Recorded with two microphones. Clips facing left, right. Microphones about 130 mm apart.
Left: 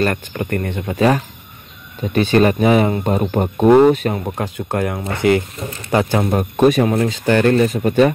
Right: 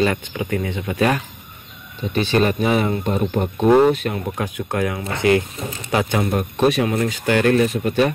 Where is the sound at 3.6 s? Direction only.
15° left (ahead or behind).